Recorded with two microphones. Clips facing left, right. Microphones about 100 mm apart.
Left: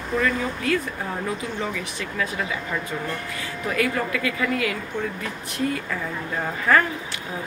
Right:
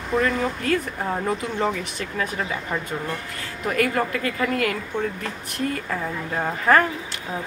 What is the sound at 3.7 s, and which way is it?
Speech, 45° right (ahead or behind).